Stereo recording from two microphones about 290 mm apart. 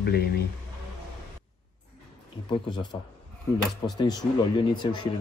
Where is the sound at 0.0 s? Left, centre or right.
Left.